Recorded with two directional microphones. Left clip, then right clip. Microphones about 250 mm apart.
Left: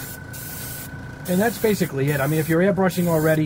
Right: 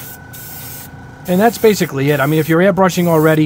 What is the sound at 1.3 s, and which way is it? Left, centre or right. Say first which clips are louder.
Speech: right 9 dB; right.